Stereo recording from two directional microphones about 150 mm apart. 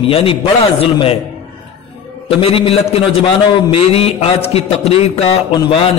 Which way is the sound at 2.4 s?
40° left (ahead or behind).